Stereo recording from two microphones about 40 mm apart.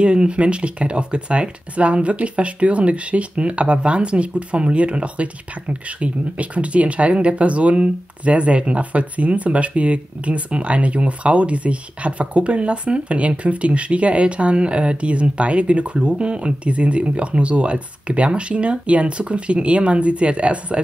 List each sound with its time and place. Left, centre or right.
0.0 s speech: right